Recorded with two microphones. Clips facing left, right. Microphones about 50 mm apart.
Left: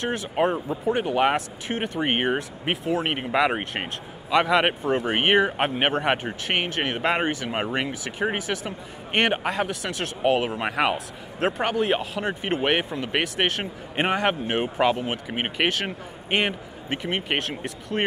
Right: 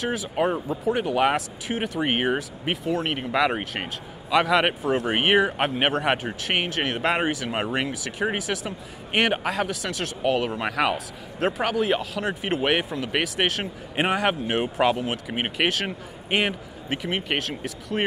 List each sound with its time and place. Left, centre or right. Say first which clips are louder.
0.0 s speech: left 1 dB; centre
11.3 s speech: even; centre